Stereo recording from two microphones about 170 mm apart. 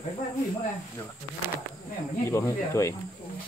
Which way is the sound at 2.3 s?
15° left (ahead or behind).